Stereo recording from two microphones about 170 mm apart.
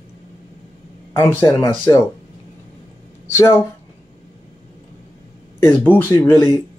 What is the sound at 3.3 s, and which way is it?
Speech, 15° left (ahead or behind).